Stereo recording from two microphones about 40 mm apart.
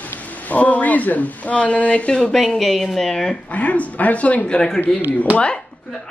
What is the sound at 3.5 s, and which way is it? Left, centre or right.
A woman's voice, left.